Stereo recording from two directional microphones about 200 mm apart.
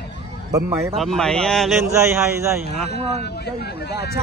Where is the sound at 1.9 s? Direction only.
15° right (ahead or behind).